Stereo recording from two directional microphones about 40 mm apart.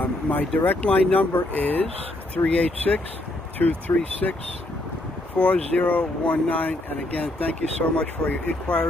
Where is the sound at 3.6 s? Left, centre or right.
Left.